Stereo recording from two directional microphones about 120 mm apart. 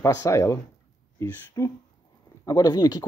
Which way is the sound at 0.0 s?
25° left (ahead or behind).